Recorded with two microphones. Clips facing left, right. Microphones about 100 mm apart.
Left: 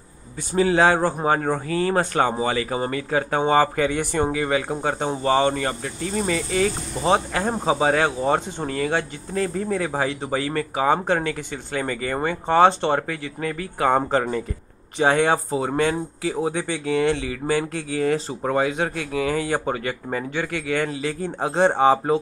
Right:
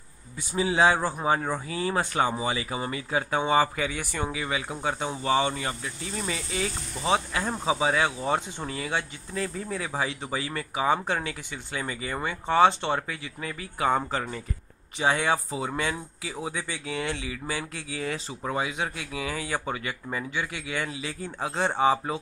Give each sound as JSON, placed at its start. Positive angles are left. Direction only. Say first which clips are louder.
{"t": 0.6, "sound": "speech", "louder": "left 5 dB", "side_deg": 55}
{"t": 21.9, "sound": "speech", "louder": "left 9 dB", "side_deg": 40}